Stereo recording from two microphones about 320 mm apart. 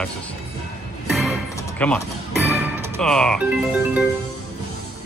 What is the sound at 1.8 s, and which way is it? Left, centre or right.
Speech, centre.